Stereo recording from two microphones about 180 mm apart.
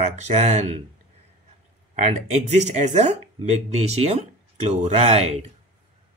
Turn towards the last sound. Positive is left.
turn(degrees=-35)  # may be behind; listen again after turning